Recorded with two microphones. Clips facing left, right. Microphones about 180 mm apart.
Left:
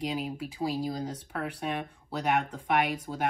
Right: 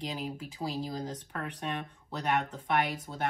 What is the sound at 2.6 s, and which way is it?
Speech, 10° left (ahead or behind).